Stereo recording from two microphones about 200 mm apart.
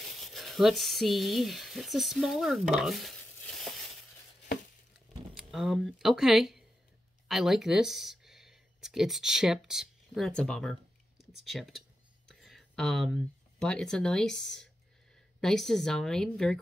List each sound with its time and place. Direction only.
0.0 s speech: centre (ahead or behind)
5.3 s speech: centre (ahead or behind)